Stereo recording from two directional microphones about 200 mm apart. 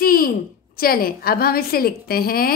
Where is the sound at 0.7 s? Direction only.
50° left (ahead or behind).